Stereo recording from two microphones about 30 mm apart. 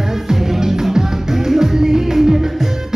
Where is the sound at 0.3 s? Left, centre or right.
Centre.